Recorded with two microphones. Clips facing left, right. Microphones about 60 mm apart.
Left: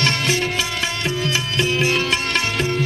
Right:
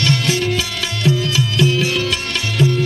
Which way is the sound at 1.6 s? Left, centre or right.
Left.